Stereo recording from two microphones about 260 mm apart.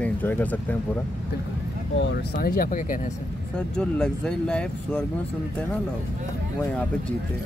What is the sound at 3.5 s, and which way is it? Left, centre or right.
Speech, centre.